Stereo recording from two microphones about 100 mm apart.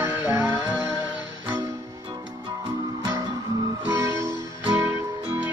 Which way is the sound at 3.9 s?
30° right (ahead or behind).